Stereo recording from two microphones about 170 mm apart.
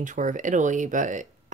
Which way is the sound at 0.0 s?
50° right (ahead or behind).